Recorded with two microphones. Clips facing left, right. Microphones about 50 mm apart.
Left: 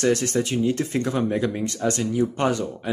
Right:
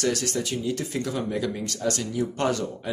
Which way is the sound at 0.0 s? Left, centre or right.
Left.